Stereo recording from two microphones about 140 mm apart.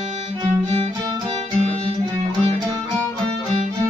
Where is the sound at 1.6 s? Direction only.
50° right (ahead or behind).